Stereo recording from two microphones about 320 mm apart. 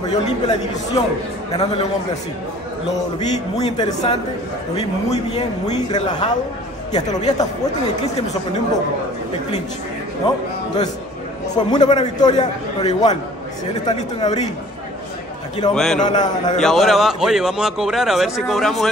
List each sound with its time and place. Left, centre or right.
0.1 s a man's voice: centre
3.2 s a man's voice: centre
11.5 s a man's voice: centre
15.7 s speech: centre
16.0 s a man's voice: centre
16.6 s speech: centre